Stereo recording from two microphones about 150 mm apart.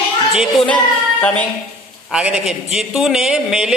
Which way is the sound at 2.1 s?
5° right (ahead or behind).